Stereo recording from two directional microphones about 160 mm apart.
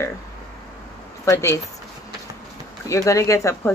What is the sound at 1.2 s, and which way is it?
Speech, 20° left (ahead or behind).